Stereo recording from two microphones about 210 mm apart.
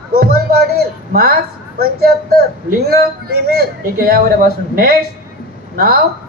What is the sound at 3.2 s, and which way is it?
A man's voice, 45° right (ahead or behind).